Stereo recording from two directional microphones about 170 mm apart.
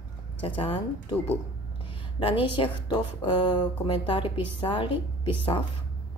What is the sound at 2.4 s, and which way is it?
A woman's voice, 30° left (ahead or behind).